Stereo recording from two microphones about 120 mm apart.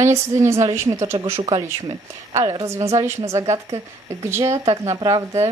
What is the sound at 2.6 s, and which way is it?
A woman's voice, 25° right (ahead or behind).